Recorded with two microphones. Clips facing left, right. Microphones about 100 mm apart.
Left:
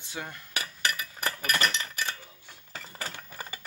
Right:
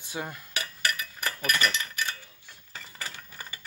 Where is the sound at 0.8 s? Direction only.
30° left (ahead or behind).